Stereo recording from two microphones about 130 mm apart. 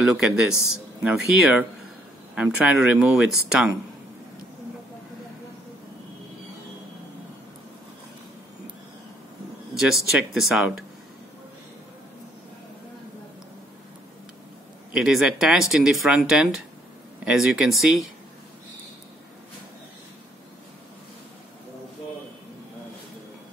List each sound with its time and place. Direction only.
0.0 s speech: 5° right (ahead or behind)
9.8 s speech: 5° right (ahead or behind)
15.0 s speech: 5° right (ahead or behind)